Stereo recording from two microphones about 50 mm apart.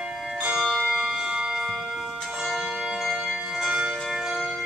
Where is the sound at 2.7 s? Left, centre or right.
Centre.